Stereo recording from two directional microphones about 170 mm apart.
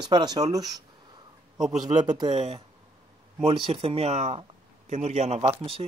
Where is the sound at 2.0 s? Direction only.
25° right (ahead or behind).